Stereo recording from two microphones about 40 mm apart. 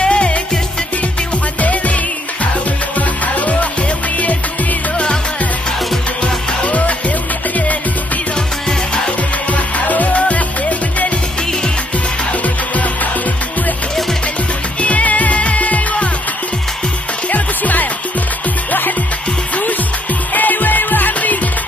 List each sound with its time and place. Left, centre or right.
0.0 s music: left
1.6 s music: left
3.0 s music: left
6.2 s music: left
9.5 s music: left
12.3 s music: left
14.8 s music: left
17.3 s music: left
20.3 s music: left